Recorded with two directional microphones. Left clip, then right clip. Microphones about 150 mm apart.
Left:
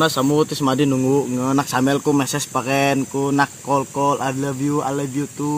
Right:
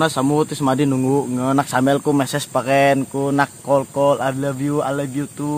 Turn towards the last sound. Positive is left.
turn(degrees=-30)  # may be behind; listen again after turning